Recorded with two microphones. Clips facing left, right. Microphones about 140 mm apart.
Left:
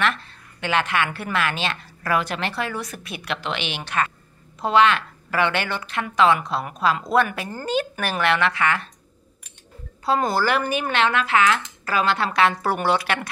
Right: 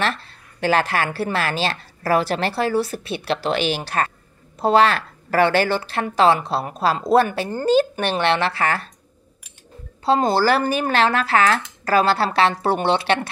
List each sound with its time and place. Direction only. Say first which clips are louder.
0.0 s a woman's voice: even; 35° right (ahead or behind)
10.0 s a woman's voice: right 4 dB; 25° right (ahead or behind)